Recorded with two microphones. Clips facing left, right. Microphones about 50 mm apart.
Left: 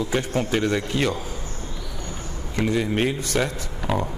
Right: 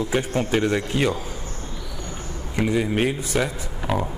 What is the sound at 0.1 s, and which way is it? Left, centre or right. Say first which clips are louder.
A man's voice: right 2 dB; centre.